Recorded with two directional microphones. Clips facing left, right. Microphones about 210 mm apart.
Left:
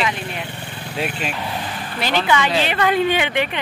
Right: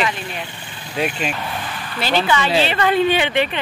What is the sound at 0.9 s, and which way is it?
Speech, centre (ahead or behind).